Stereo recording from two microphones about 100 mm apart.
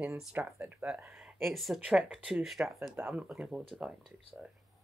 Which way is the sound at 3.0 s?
15° right (ahead or behind).